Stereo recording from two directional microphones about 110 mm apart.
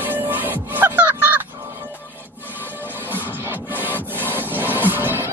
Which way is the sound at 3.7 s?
15° left (ahead or behind).